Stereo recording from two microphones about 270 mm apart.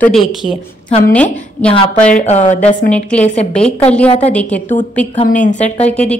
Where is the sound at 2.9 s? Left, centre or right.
Centre.